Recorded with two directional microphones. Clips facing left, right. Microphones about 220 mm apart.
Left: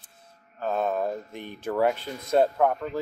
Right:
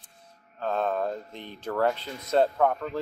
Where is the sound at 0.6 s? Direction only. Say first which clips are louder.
Left 1 dB; 10° left (ahead or behind).